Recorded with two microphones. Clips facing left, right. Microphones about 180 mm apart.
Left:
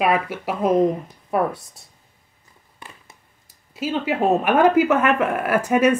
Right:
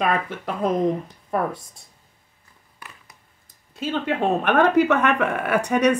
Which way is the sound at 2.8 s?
25° left (ahead or behind).